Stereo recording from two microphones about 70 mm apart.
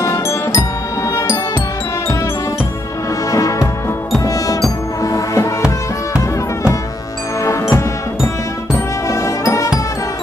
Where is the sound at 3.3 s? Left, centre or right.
Left.